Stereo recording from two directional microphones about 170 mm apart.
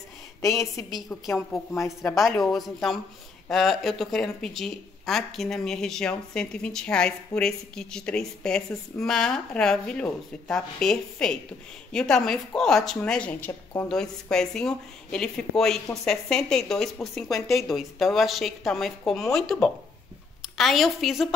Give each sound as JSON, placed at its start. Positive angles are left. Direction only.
{"t": 0.4, "sound": "a woman's voice", "side_deg": 15}
{"t": 1.9, "sound": "a woman's voice", "side_deg": 0}